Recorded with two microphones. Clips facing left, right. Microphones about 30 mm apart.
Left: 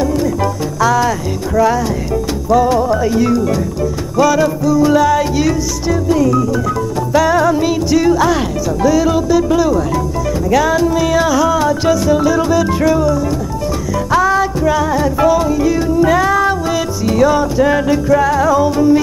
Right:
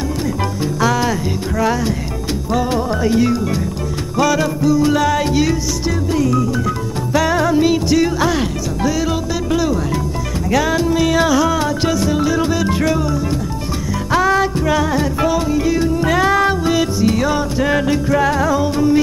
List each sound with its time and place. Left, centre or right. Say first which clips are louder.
0.7 s music: left 4 dB; right
2.5 s music: left 7 dB; right
7.2 s music: left 3 dB; centre
8.1 s music: left 5 dB; centre
8.8 s music: left 6 dB; right
12.9 s music: left 4 dB; centre
15.1 s music: left 4 dB; centre